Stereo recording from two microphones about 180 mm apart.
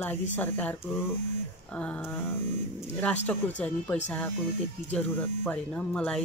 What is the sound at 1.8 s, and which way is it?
Speech, 10° left (ahead or behind).